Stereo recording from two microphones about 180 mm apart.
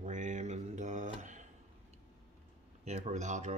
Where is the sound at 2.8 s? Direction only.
40° right (ahead or behind).